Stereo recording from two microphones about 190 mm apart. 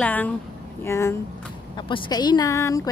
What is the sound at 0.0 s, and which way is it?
A woman's voice, 10° left (ahead or behind).